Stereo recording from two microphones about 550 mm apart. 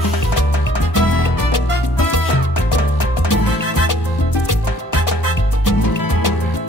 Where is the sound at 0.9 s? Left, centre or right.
Left.